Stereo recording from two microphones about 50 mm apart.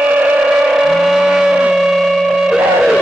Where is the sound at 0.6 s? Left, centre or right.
Centre.